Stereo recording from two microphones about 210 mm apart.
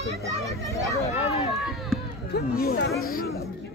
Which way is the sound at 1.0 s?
30° left (ahead or behind).